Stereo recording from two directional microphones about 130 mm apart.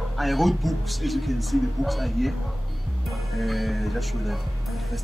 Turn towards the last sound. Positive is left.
turn(degrees=0)  # may be behind; listen again after turning